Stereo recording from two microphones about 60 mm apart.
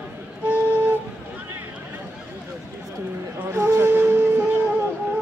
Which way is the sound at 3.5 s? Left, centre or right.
Right.